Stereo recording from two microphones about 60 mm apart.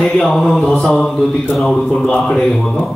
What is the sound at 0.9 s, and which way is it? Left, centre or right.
A man's voice, centre.